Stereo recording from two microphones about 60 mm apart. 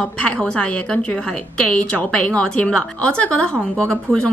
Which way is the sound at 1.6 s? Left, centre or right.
Left.